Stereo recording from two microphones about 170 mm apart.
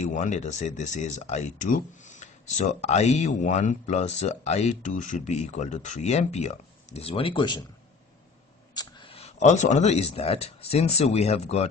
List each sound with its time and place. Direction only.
0.0 s speech: 45° left (ahead or behind); by 7.6 s 25° left (ahead or behind)
8.7 s speech: 25° left (ahead or behind)